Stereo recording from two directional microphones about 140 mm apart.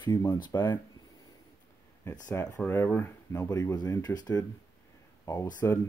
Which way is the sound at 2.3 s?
15° left (ahead or behind).